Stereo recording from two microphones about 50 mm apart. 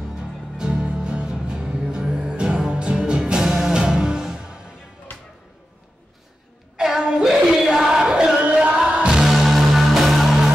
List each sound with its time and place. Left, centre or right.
0.1 s music: centre
6.8 s a sound: centre
8.4 s music: right
9.2 s music: centre